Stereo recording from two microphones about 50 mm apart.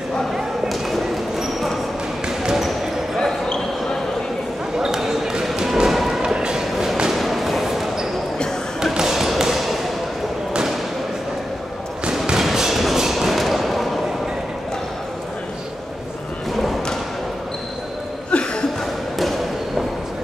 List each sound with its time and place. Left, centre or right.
0.7 s a sound: centre
2.2 s basketball bounce: centre
3.2 s basketball bounce: centre
4.7 s basketball bounce: centre
6.3 s a sound: centre
6.6 s a sound: centre
8.9 s basketball bounce: centre
12.4 s thump: centre
18.3 s chuckle: centre